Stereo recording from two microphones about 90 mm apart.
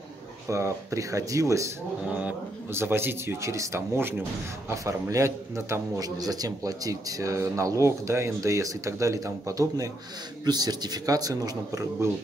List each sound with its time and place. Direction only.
0.5 s a man's voice: 35° right (ahead or behind)
2.0 s a man's voice: 15° right (ahead or behind)
2.7 s a man's voice: 25° right (ahead or behind)
10.4 s a man's voice: 50° right (ahead or behind)